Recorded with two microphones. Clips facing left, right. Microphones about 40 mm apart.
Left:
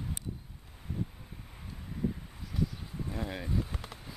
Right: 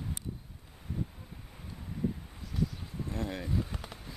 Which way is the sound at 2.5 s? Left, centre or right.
Centre.